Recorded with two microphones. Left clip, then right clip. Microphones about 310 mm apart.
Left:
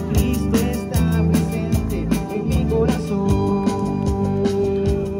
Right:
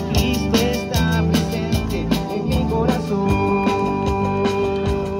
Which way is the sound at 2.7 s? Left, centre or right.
Right.